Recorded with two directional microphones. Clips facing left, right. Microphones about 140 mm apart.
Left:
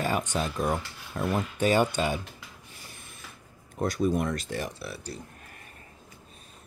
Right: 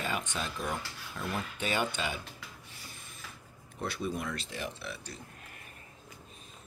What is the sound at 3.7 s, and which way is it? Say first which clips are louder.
Speech: left 9 dB; 45° left (ahead or behind).